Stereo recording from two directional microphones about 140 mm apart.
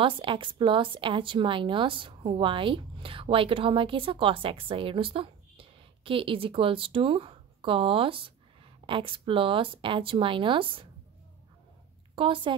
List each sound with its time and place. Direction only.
0.0 s a woman's voice: 40° right (ahead or behind)
12.2 s a woman's voice: 35° right (ahead or behind)